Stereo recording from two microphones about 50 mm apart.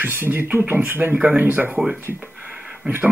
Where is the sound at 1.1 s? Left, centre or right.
Right.